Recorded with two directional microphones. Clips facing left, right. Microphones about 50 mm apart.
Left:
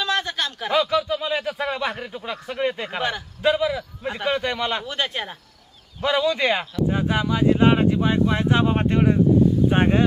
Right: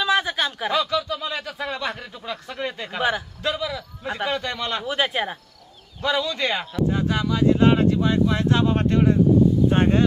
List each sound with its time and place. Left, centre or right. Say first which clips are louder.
0.0 s a sound: right 3 dB; centre
0.7 s a man's voice: left 5 dB; centre
4.8 s speech: right 3 dB; centre
6.0 s speech: left 3 dB; centre